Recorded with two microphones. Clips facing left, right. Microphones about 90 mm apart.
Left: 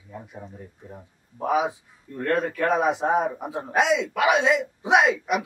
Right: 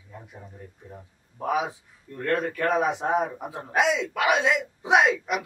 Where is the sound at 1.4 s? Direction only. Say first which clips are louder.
Left 3 dB; centre (ahead or behind).